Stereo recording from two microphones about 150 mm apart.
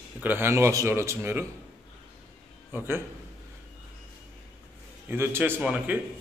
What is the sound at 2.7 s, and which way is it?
Speech, 15° right (ahead or behind).